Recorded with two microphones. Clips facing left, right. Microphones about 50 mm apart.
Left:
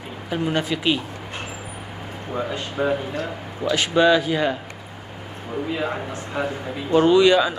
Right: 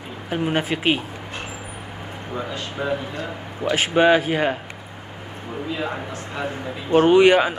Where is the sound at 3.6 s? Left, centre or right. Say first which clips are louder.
Even; right.